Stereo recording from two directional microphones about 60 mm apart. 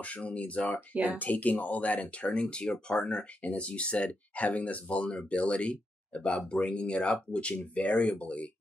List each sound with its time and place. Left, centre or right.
0.0 s speech: left